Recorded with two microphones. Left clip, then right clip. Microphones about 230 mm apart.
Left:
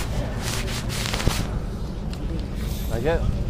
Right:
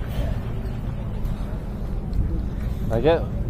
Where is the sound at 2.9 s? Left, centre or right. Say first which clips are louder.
Right 5 dB; right.